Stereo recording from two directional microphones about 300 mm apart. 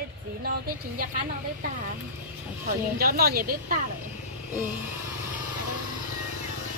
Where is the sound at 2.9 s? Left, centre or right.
Right.